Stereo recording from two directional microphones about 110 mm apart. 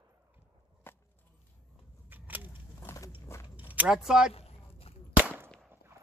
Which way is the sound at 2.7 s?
25° left (ahead or behind).